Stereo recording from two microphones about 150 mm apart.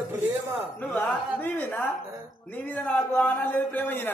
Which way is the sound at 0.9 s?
10° left (ahead or behind).